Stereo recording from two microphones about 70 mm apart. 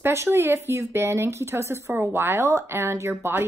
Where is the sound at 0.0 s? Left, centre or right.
Right.